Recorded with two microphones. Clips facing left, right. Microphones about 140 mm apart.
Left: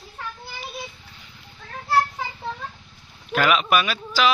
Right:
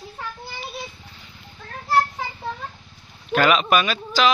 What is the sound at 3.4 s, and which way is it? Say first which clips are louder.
Speech: right 1 dB; 5° left (ahead or behind).